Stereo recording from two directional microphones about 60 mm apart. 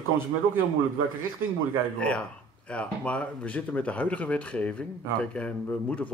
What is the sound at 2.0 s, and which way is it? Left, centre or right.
Speech, centre.